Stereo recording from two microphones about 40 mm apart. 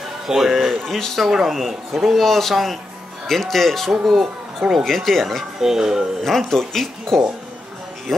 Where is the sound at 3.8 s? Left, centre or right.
Centre.